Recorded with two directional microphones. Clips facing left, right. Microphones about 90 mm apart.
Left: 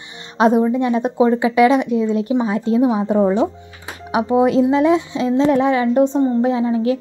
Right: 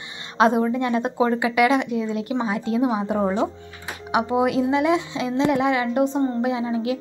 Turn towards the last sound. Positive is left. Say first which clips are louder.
# left 6 dB
turn(degrees=35)  # may be behind; listen again after turning